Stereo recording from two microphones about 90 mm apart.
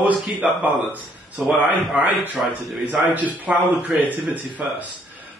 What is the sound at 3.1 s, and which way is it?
A man's voice, 15° right (ahead or behind).